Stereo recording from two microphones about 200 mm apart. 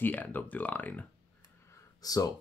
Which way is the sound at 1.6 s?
15° left (ahead or behind).